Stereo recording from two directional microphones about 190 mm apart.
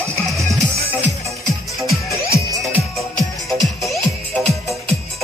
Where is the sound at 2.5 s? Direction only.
15° right (ahead or behind).